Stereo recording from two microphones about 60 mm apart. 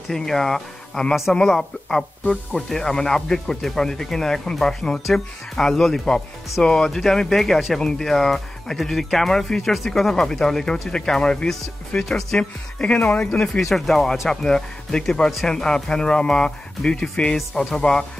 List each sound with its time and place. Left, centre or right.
0.1 s speech: centre
12.4 s speech: centre
13.6 s speech: centre